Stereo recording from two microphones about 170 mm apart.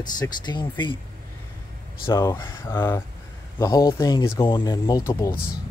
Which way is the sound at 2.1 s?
15° left (ahead or behind).